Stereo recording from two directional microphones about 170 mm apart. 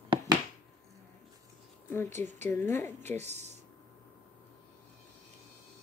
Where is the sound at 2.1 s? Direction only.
40° right (ahead or behind).